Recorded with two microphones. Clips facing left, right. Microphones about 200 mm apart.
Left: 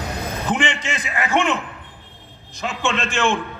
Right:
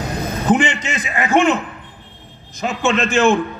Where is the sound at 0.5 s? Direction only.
40° right (ahead or behind).